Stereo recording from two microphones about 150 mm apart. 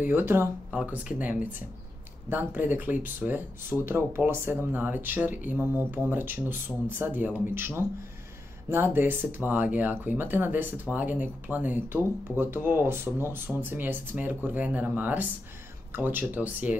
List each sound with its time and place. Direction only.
0.0 s speech: 15° right (ahead or behind)